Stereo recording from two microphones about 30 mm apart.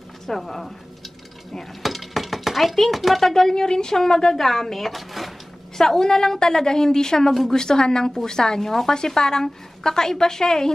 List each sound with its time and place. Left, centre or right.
0.3 s speech: centre
1.6 s dishes: centre
2.9 s speech: centre
3.6 s a woman's voice: left
4.4 s speech: centre
5.8 s a woman's voice: centre